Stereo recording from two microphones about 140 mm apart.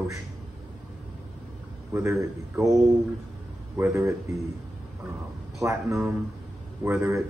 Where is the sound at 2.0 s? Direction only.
20° right (ahead or behind).